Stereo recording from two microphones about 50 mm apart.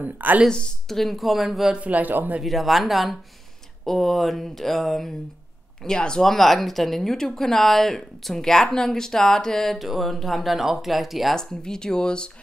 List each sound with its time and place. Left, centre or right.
0.0 s a man's voice: right
0.8 s speech: centre
1.7 s a man's voice: right
2.4 s speech: centre
5.9 s speech: centre
6.2 s speech: centre
11.3 s speech: centre